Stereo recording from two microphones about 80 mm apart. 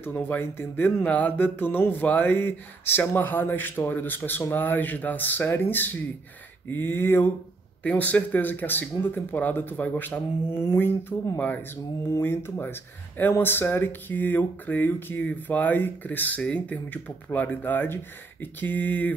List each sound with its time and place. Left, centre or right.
0.0 s speech: left